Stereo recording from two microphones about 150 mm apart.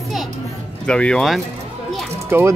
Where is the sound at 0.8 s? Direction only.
5° left (ahead or behind).